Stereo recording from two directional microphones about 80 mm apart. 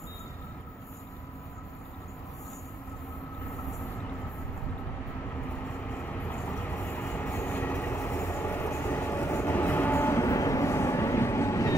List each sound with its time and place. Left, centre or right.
5.9 s vehicle: centre
6.4 s train: left